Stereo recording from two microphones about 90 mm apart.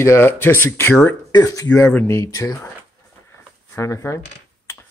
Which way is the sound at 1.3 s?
40° left (ahead or behind).